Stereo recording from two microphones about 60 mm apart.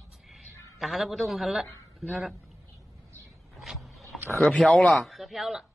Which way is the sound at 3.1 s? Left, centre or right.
Right.